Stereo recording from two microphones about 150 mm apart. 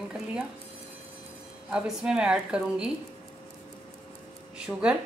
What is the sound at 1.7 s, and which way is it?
A woman's voice, 5° right (ahead or behind).